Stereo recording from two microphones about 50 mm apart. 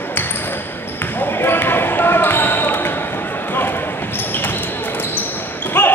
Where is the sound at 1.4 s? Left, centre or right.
Left.